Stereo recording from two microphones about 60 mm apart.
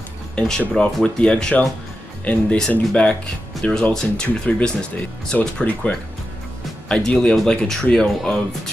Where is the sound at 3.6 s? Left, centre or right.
Centre.